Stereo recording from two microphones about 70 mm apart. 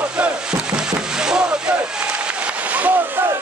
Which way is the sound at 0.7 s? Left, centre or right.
Centre.